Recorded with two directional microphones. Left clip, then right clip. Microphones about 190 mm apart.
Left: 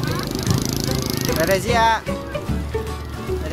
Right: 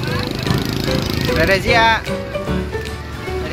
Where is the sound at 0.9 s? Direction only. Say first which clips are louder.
Right 6 dB; 20° right (ahead or behind).